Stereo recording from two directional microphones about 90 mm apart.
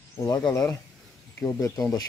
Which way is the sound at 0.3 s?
45° left (ahead or behind).